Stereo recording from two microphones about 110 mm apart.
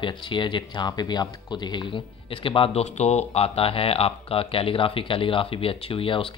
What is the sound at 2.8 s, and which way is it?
Speech, 90° left.